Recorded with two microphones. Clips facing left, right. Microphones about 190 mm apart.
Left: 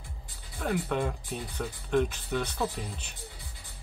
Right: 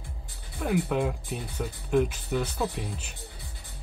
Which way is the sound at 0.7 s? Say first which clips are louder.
Right 3 dB; 5° right (ahead or behind).